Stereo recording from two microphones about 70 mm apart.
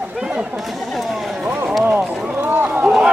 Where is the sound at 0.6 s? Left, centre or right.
Centre.